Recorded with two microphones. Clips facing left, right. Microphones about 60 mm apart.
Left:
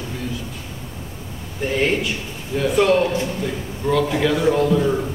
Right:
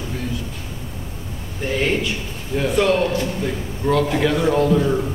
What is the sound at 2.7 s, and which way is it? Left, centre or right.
Speech, centre.